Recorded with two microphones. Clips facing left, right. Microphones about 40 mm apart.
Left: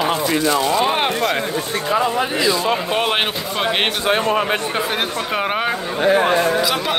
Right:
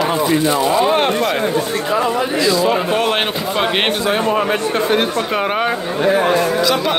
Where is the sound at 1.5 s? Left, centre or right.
Right.